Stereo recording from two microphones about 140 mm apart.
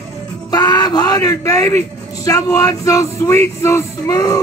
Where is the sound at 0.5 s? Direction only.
30° left (ahead or behind).